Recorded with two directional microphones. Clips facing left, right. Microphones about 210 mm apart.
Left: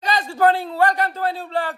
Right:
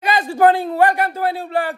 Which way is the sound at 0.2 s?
15° right (ahead or behind).